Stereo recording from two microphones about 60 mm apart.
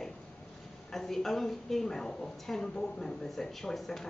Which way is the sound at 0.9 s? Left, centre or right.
Centre.